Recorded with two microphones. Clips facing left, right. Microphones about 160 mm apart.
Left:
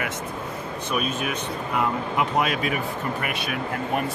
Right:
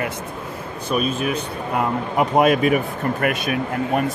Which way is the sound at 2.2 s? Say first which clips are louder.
Right 9 dB; 50° right (ahead or behind).